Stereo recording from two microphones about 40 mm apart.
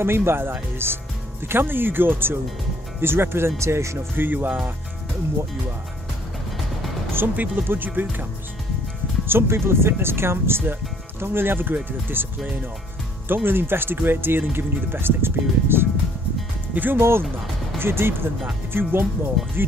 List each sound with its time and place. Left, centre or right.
0.0 s speech: right
3.0 s speech: right
7.2 s speech: right
9.3 s speech: right
10.7 s speech: right
13.3 s speech: right
16.9 s speech: right
18.7 s speech: right